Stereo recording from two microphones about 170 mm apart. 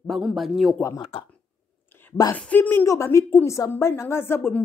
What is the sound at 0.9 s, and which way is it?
Speech, 30° left (ahead or behind).